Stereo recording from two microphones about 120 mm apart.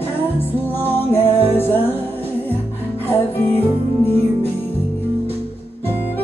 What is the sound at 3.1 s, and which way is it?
Music, 20° left (ahead or behind).